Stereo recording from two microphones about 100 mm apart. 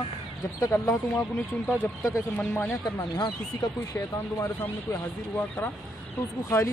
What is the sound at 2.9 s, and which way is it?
Speech, 45° left (ahead or behind).